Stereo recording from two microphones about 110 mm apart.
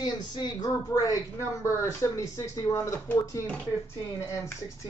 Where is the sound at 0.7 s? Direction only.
30° left (ahead or behind).